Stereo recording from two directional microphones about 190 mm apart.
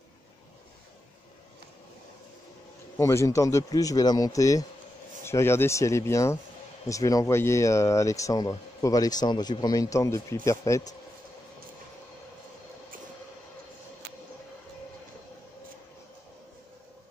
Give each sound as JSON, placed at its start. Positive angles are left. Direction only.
{"t": 3.0, "sound": "speech", "side_deg": 15}